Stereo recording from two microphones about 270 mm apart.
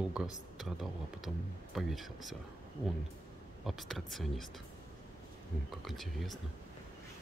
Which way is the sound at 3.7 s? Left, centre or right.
Centre.